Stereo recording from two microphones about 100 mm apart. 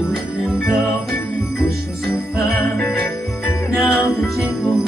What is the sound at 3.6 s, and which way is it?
Music, 30° left (ahead or behind).